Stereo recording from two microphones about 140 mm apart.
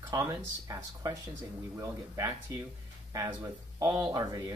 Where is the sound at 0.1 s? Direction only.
25° right (ahead or behind).